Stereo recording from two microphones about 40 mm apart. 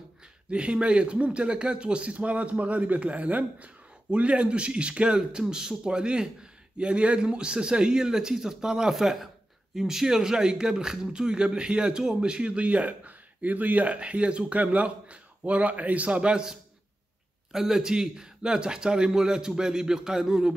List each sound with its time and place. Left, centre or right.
0.5 s a man's voice: right
8.9 s speech: centre; by 16.4 s right
17.5 s speech: centre